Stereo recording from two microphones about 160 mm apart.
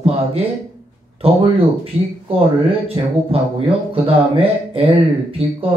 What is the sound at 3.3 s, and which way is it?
Speech, 35° right (ahead or behind).